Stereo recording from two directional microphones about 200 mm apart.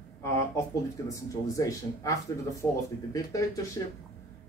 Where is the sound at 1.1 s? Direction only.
15° left (ahead or behind).